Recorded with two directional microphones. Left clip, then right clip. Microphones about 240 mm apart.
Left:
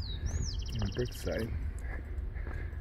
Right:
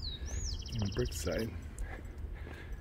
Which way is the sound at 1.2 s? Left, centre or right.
Centre.